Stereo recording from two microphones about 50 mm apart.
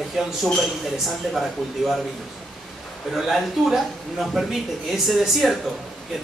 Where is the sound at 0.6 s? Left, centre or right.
Centre.